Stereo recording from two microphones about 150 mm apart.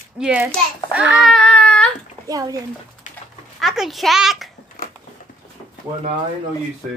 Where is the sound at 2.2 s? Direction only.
25° right (ahead or behind).